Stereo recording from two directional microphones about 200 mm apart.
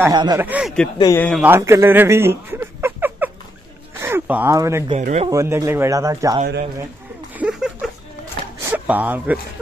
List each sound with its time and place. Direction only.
0.1 s speech: 20° right (ahead or behind)
0.4 s speech: 5° right (ahead or behind)
0.9 s speech: 20° left (ahead or behind)
1.4 s speech: 10° right (ahead or behind)
4.9 s speech: 35° right (ahead or behind)
5.3 s speech: 15° right (ahead or behind)
7.3 s a sound: 5° right (ahead or behind)
8.6 s speech: 10° right (ahead or behind)